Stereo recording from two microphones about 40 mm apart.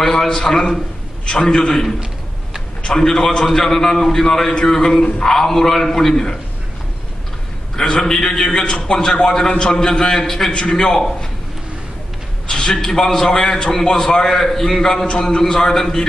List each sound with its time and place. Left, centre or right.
0.0 s a man's voice: centre
7.7 s a man's voice: centre
10.5 s a man's voice: left
12.4 s a man's voice: centre